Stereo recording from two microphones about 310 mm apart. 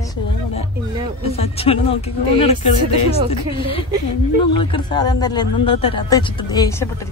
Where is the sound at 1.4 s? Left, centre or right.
Centre.